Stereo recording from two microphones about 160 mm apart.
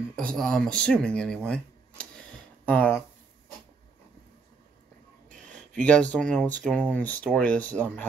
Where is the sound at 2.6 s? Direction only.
10° left (ahead or behind).